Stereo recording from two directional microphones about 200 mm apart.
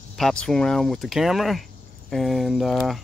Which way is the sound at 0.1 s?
5° left (ahead or behind).